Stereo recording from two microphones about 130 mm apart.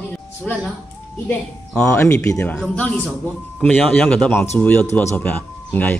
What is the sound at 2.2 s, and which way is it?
Speech, 20° left (ahead or behind).